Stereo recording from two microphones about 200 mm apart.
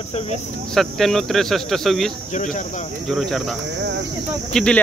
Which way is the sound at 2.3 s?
35° left (ahead or behind).